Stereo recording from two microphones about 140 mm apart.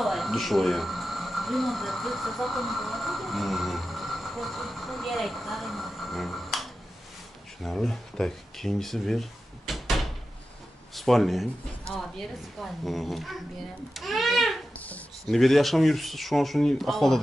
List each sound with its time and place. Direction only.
0.0 s speech: centre (ahead or behind)
11.0 s speech: centre (ahead or behind)
12.5 s a child's voice: centre (ahead or behind)